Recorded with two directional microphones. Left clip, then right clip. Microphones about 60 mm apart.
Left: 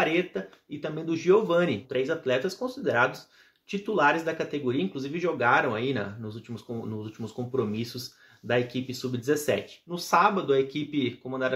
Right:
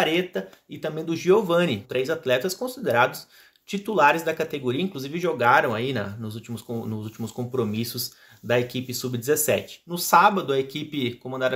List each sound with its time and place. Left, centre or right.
0.0 s speech: right